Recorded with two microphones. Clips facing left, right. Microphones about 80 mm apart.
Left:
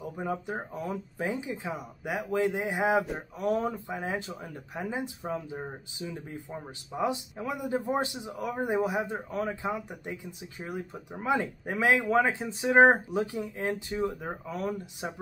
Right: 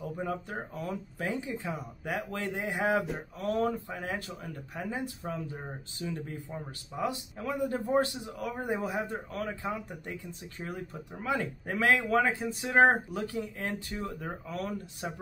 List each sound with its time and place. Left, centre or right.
0.0 s speech: centre